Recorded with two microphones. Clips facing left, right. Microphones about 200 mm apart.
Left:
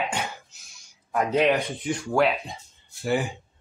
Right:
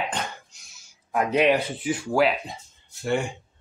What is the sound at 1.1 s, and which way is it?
Speech, 10° right (ahead or behind).